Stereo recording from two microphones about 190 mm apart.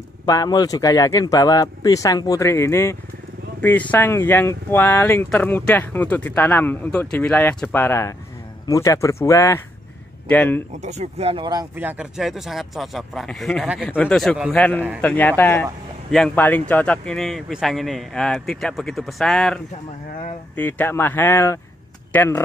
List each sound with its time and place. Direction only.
0.2 s a man's voice: 20° left (ahead or behind)
10.8 s speech: 35° right (ahead or behind)
11.7 s speech: 10° right (ahead or behind)
15.0 s speech: 10° left (ahead or behind)